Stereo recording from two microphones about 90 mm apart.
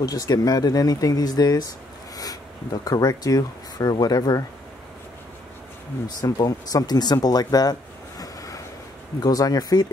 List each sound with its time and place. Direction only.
0.0 s speech: 45° left (ahead or behind)
6.0 s speech: 45° left (ahead or behind)
8.2 s a sound: 40° left (ahead or behind)
9.2 s speech: 45° left (ahead or behind)